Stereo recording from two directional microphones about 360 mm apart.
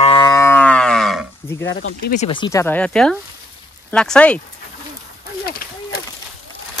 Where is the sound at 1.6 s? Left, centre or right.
Left.